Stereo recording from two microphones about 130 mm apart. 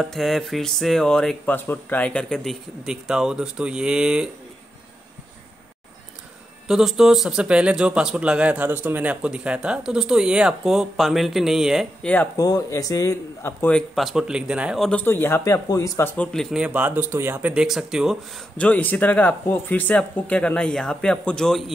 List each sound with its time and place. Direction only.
0.0 s a man's voice: centre (ahead or behind)
1.4 s a man's voice: 15° left (ahead or behind); by 4.3 s 5° right (ahead or behind)
6.7 s a man's voice: centre (ahead or behind)
12.0 s speech: 10° left (ahead or behind)
12.4 s speech: 30° left (ahead or behind)
13.7 s a man's voice: centre (ahead or behind)
14.9 s speech: 15° left (ahead or behind)
16.2 s a man's voice: 5° left (ahead or behind)
16.5 s speech: 10° right (ahead or behind)
18.6 s speech: 15° left (ahead or behind)